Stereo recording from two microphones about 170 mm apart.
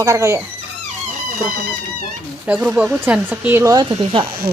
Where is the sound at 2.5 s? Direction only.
10° right (ahead or behind).